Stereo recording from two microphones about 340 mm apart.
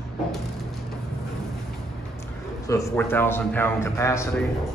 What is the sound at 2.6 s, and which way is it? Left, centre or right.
A man's voice, centre.